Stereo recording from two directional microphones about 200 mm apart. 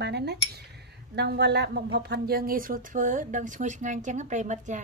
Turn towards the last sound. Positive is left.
turn(degrees=-35)  # may be behind; listen again after turning